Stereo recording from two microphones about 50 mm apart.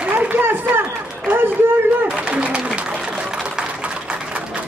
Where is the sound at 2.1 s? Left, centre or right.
Right.